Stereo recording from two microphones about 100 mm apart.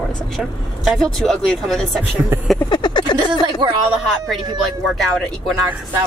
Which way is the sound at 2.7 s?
50° left (ahead or behind).